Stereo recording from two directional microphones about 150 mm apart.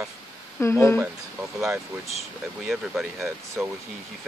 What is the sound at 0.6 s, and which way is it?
Speech, 15° left (ahead or behind).